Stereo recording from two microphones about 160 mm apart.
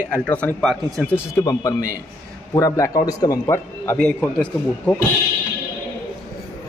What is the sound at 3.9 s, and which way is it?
A man's voice, 5° left (ahead or behind).